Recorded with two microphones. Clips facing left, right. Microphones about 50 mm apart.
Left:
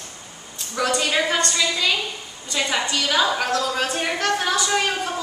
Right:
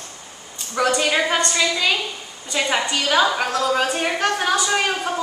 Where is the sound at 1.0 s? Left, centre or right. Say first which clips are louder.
Right 2 dB; centre.